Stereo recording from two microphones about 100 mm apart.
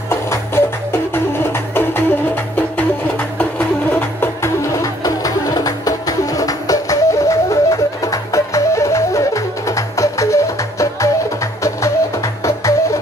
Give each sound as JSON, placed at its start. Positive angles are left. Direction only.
{"t": 0.1, "sound": "music", "side_deg": 25}